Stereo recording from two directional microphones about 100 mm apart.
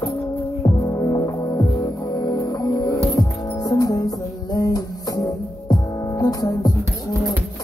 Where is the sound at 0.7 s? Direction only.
30° left (ahead or behind).